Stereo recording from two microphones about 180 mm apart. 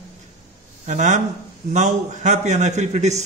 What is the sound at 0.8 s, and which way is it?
A man's voice, 40° right (ahead or behind).